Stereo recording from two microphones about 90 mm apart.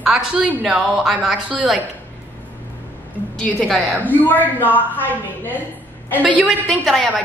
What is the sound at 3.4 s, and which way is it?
Speech, 5° left (ahead or behind).